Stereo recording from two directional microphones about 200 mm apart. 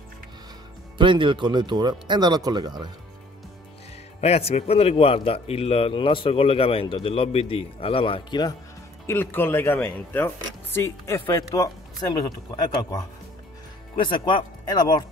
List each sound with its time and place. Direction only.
0.9 s speech: 25° right (ahead or behind)
4.2 s a man's voice: 30° left (ahead or behind)
9.0 s speech: 10° left (ahead or behind)
13.9 s a man's voice: 25° left (ahead or behind)